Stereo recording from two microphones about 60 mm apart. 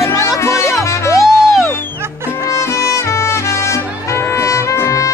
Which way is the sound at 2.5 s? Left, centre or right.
Left.